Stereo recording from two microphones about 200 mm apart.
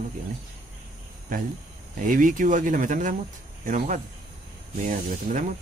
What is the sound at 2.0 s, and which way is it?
Speech, 40° right (ahead or behind).